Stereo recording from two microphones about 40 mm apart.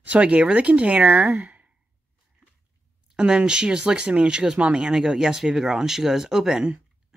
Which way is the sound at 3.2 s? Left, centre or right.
Right.